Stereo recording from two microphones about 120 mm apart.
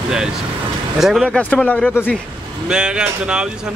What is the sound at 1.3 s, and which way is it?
Speech, 10° left (ahead or behind).